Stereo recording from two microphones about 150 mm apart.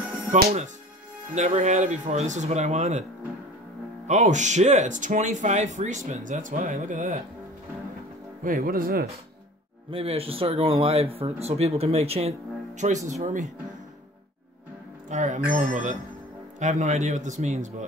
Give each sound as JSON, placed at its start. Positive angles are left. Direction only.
{"t": 0.3, "sound": "speech", "side_deg": -45}
{"t": 4.1, "sound": "speech", "side_deg": -55}
{"t": 8.5, "sound": "speech", "side_deg": -70}
{"t": 9.8, "sound": "speech", "side_deg": -40}
{"t": 15.0, "sound": "speech", "side_deg": -55}